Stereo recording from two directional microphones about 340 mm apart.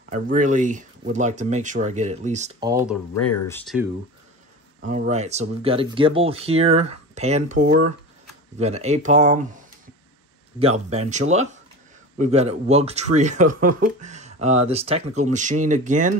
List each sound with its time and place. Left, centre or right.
0.1 s speech: right
2.7 s speech: centre
4.8 s speech: right